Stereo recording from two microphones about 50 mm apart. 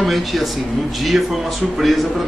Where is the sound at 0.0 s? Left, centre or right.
Centre.